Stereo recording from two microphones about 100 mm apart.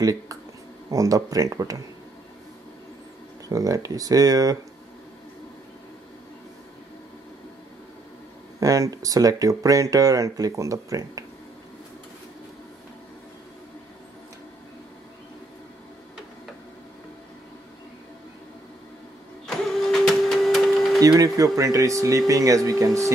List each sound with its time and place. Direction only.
0.0 s speech: 35° right (ahead or behind)
3.4 s speech: 35° right (ahead or behind)
8.5 s speech: 35° right (ahead or behind)
19.4 s printer: centre (ahead or behind)
21.2 s speech: 35° right (ahead or behind)